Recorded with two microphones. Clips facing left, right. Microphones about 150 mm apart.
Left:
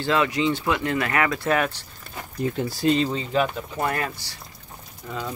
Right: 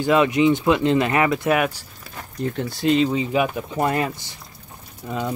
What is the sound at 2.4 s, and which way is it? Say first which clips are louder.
Speech: even; 5° left (ahead or behind).